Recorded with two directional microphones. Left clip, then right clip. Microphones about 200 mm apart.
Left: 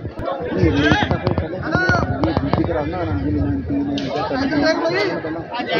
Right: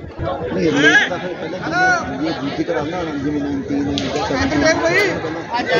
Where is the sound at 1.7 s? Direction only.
15° left (ahead or behind).